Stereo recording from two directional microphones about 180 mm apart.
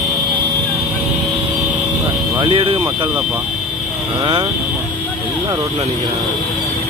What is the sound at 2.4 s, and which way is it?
Speech, 30° right (ahead or behind).